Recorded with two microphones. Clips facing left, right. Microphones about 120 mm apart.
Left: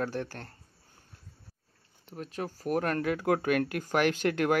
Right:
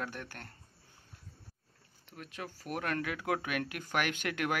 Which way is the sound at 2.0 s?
35° left (ahead or behind).